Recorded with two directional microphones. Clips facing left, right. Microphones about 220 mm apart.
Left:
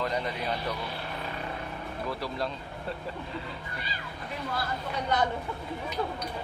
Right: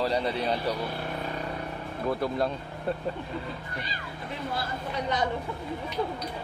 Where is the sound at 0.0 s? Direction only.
35° right (ahead or behind).